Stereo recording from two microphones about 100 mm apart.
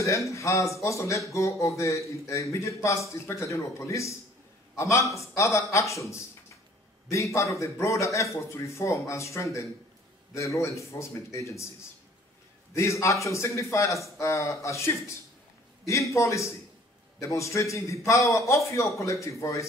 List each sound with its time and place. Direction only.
0.3 s a man's voice: 30° left (ahead or behind)
12.7 s a man's voice: 30° left (ahead or behind)